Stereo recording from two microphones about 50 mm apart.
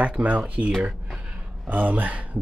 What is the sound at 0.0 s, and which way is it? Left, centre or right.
Speech, right.